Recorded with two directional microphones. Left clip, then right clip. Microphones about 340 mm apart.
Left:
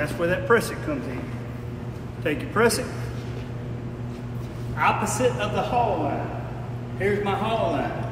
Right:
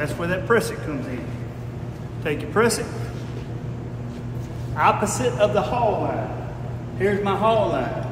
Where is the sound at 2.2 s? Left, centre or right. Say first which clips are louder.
Right 1 dB; centre.